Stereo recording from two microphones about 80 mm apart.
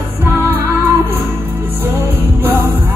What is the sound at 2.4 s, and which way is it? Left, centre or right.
Music, right.